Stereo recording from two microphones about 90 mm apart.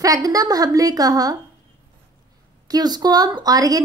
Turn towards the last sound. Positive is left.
turn(degrees=-45)  # may be behind; listen again after turning